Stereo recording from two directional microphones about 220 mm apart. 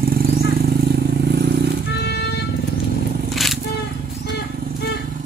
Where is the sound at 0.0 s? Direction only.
40° right (ahead or behind).